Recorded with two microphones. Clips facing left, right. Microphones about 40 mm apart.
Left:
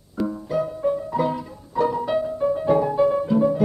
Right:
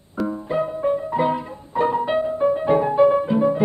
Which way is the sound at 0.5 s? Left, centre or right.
Right.